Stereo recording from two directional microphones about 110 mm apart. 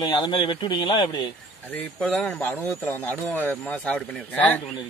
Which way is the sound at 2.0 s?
10° left (ahead or behind).